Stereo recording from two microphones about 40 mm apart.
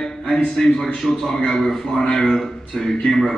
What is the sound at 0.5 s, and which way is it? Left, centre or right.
A man's voice, centre.